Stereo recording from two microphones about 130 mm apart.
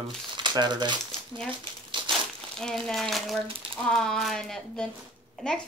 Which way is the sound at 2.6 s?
5° left (ahead or behind).